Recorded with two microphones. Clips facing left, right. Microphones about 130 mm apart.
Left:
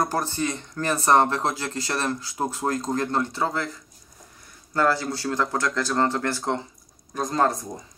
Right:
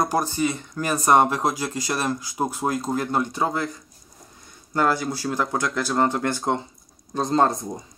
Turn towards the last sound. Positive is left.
turn(degrees=-25)  # may be behind; listen again after turning